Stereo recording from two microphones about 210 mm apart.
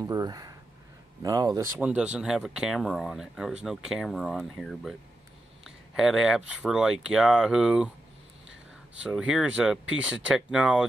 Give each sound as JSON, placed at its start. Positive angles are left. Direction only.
{"t": 0.0, "sound": "speech", "side_deg": -15}
{"t": 1.8, "sound": "speech", "side_deg": -5}
{"t": 9.0, "sound": "speech", "side_deg": -5}